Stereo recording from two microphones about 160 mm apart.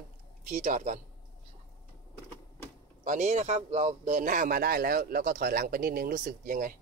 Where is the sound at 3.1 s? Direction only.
45° right (ahead or behind).